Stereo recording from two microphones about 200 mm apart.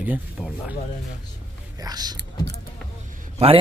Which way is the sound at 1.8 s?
20° right (ahead or behind).